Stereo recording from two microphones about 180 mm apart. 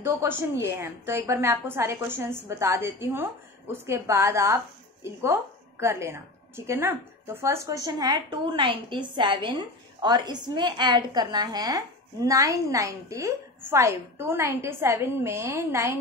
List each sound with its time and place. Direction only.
0.0 s a woman's voice: 15° right (ahead or behind)